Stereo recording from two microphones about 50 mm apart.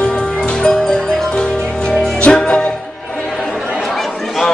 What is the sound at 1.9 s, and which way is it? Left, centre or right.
Music, centre.